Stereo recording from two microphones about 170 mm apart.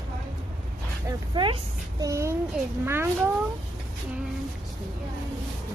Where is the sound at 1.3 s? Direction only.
30° right (ahead or behind).